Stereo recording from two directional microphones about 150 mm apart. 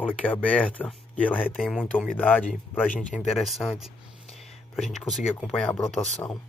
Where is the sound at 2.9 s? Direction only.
Centre (ahead or behind).